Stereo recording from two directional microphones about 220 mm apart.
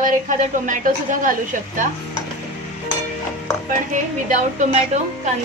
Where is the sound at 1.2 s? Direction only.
35° right (ahead or behind).